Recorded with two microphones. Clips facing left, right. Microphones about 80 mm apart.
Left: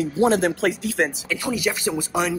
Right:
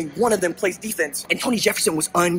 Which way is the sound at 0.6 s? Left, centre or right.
Left.